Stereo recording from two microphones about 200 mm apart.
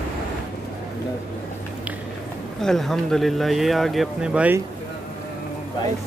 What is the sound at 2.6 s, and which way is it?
Speech, centre (ahead or behind).